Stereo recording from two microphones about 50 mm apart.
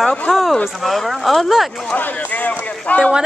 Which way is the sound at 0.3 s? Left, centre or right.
Centre.